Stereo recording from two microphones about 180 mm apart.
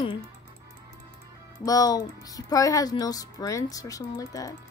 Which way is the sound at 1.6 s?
20° left (ahead or behind).